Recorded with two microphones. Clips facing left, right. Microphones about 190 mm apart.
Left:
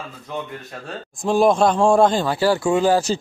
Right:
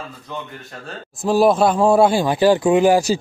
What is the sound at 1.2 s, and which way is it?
A man's voice, 5° right (ahead or behind).